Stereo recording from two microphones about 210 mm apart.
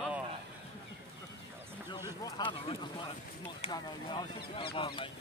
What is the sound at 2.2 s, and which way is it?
Speech, 20° left (ahead or behind).